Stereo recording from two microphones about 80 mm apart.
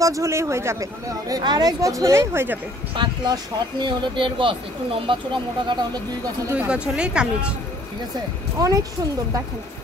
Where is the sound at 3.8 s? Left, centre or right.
Right.